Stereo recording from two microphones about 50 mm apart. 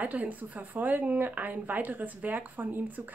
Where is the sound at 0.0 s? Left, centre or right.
Right.